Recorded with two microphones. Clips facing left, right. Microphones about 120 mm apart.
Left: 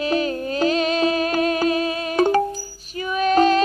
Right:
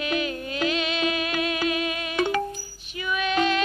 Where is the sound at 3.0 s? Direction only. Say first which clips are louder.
Left 7 dB; 40° left (ahead or behind).